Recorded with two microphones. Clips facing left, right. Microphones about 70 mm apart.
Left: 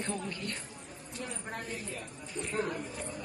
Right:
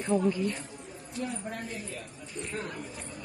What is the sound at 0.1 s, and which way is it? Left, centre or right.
Speech, centre.